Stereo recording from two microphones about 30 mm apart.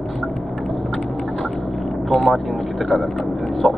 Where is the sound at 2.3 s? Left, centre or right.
Centre.